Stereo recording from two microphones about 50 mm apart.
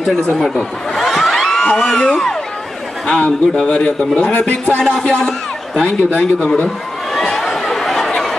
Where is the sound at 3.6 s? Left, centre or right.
Centre.